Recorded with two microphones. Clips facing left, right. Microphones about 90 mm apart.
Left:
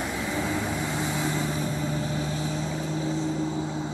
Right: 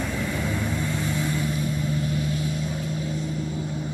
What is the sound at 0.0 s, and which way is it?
Vehicle, 20° left (ahead or behind).